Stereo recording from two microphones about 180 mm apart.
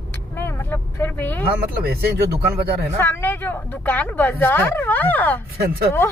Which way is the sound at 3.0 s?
10° left (ahead or behind).